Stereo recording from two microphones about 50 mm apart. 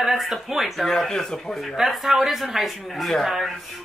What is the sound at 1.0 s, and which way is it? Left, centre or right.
Speech, centre.